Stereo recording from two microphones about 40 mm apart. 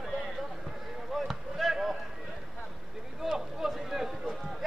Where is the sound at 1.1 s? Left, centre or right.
Centre.